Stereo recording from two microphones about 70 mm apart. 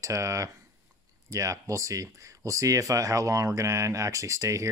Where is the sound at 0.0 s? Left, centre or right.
Right.